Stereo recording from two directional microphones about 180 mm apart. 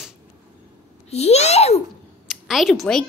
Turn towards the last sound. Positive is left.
turn(degrees=0)  # may be behind; listen again after turning